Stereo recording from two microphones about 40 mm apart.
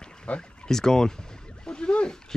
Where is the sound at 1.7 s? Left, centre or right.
Left.